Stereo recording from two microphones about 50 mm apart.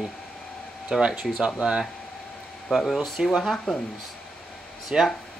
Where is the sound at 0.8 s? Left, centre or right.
Centre.